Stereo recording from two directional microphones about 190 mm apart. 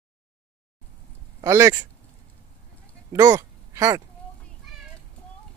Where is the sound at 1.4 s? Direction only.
15° right (ahead or behind).